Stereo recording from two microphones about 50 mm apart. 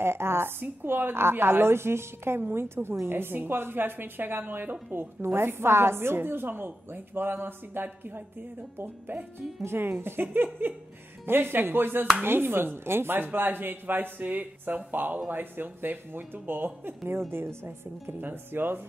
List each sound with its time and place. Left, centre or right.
0.0 s a woman's voice: right
1.1 s a woman's voice: right